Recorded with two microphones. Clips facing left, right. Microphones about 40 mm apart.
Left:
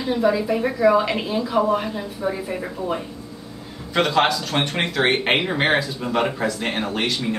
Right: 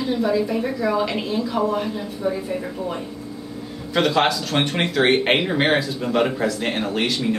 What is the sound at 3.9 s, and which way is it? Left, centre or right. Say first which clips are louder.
Speech: even; centre.